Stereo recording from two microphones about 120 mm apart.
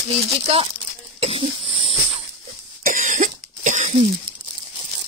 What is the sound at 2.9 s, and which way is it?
Cough, 90° right.